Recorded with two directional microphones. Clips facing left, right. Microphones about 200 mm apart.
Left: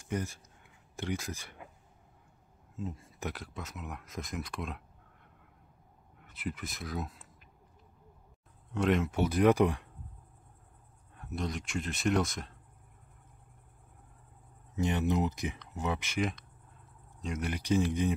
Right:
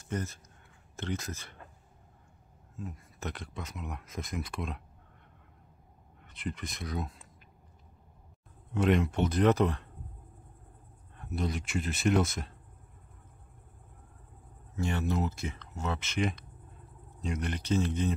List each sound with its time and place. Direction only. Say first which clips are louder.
0.0 s speech: even; 15° left (ahead or behind)
2.8 s speech: left 3 dB; 25° left (ahead or behind)
3.2 s speech: right 2 dB; 5° left (ahead or behind)
6.2 s speech: right 1 dB; 5° left (ahead or behind)
8.7 s speech: right 2 dB; centre (ahead or behind)
11.1 s speech: right 2 dB; centre (ahead or behind)
14.8 s speech: left 2 dB; 20° left (ahead or behind)
16.2 s speech: right 1 dB; centre (ahead or behind)